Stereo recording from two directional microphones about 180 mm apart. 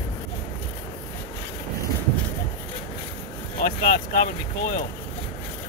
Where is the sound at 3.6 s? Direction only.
55° left (ahead or behind).